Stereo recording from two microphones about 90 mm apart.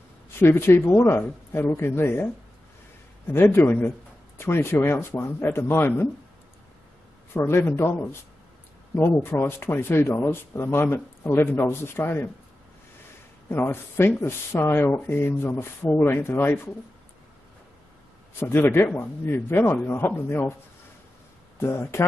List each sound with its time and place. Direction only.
0.4 s speech: 25° left (ahead or behind)
3.3 s speech: 25° left (ahead or behind)
7.3 s speech: 25° left (ahead or behind)
13.5 s speech: 25° left (ahead or behind)
18.4 s speech: 25° left (ahead or behind)
21.5 s speech: 30° left (ahead or behind)